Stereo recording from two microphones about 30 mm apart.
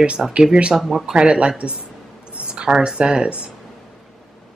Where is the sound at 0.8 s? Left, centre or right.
Centre.